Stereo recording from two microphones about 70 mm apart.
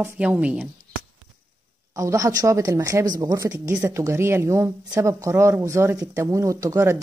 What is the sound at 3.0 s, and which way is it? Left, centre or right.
Speech, right.